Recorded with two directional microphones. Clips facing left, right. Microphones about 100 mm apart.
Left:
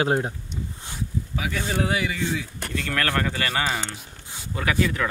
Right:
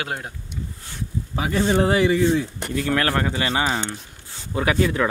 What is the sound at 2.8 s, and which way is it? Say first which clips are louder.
Speech: right 4 dB; 20° right (ahead or behind).